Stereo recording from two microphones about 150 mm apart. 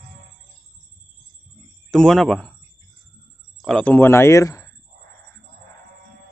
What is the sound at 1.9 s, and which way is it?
Speech, 5° left (ahead or behind).